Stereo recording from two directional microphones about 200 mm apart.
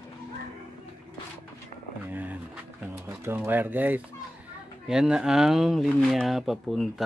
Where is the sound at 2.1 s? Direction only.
10° right (ahead or behind).